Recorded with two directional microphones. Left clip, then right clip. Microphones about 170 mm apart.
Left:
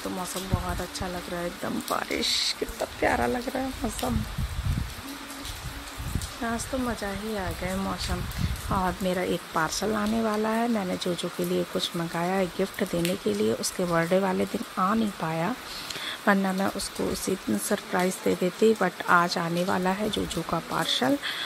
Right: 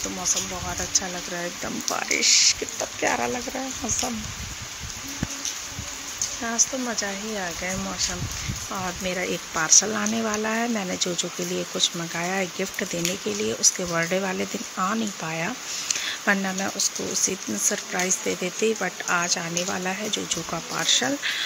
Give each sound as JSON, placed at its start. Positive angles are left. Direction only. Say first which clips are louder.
{"t": 1.9, "sound": "speech", "louder": "right 6 dB", "side_deg": 5}
{"t": 6.4, "sound": "speech", "louder": "right 3 dB", "side_deg": 5}
{"t": 8.7, "sound": "speech", "louder": "left 2 dB", "side_deg": 15}